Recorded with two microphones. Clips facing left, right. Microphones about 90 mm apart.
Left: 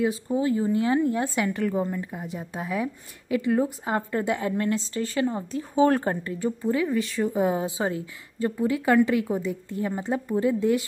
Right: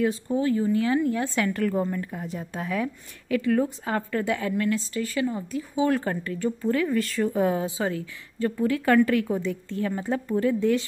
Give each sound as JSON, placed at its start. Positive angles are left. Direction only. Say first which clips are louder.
{"t": 0.0, "sound": "a woman's voice", "louder": "even", "side_deg": 10}
{"t": 1.3, "sound": "a woman's voice", "louder": "right 1 dB", "side_deg": 15}
{"t": 6.2, "sound": "a woman's voice", "louder": "even", "side_deg": 20}
{"t": 7.4, "sound": "a woman's voice", "louder": "even", "side_deg": 20}